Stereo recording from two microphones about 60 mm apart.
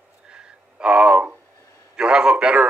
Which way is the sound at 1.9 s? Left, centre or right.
Centre.